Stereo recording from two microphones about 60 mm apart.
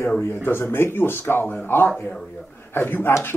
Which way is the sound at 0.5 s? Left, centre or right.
Left.